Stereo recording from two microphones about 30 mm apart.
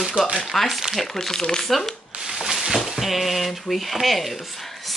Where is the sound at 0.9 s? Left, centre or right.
Centre.